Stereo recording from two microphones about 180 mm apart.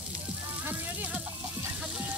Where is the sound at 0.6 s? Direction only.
10° right (ahead or behind).